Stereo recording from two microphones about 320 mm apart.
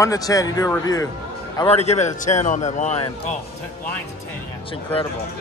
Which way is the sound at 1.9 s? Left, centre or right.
Left.